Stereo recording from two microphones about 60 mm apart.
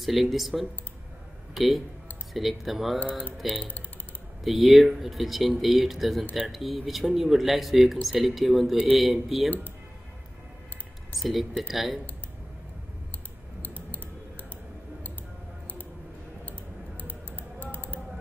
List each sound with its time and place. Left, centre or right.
0.0 s speech: centre
11.1 s speech: centre
13.6 s clicking: left
17.6 s typing: left